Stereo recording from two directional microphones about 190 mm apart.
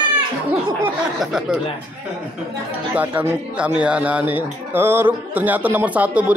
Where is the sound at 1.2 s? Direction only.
5° right (ahead or behind).